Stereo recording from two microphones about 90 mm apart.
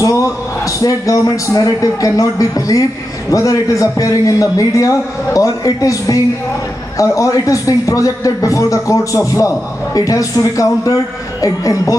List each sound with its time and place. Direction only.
0.0 s a man's voice: 35° left (ahead or behind)